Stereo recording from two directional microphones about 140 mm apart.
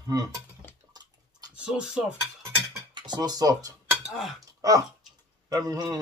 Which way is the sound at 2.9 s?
30° right (ahead or behind).